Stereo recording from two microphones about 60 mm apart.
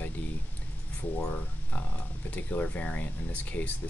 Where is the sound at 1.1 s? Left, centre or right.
Left.